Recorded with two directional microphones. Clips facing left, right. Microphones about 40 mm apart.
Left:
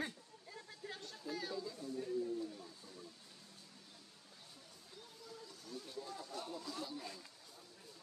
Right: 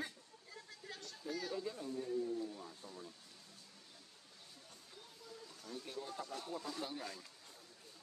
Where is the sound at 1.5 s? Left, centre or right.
Right.